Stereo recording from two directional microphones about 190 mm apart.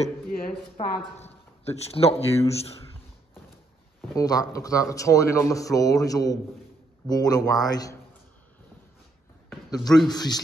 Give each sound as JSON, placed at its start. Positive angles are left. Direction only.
{"t": 0.7, "sound": "speech", "side_deg": 35}
{"t": 4.1, "sound": "a man's voice", "side_deg": 20}
{"t": 9.8, "sound": "a man's voice", "side_deg": 0}
{"t": 10.1, "sound": "speech", "side_deg": 20}